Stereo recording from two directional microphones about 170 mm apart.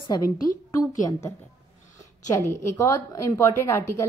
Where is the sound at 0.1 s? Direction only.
20° left (ahead or behind).